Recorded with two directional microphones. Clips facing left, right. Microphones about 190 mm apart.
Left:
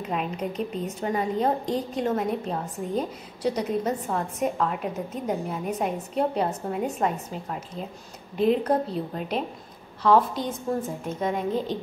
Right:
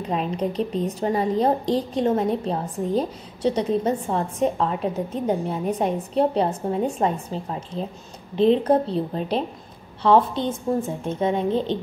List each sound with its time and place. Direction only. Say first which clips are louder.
0.1 s a woman's voice: right 5 dB; 35° right (ahead or behind)